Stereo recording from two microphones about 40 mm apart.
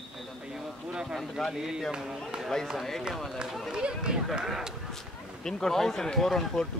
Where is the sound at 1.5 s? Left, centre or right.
Centre.